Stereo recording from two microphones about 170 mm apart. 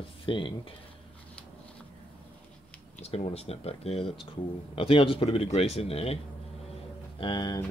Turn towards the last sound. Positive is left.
turn(degrees=25)  # may be behind; listen again after turning